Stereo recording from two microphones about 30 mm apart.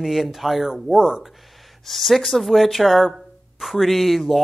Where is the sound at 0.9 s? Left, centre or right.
Right.